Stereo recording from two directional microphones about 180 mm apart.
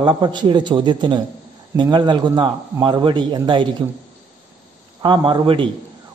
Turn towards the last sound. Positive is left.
turn(degrees=-30)  # may be behind; listen again after turning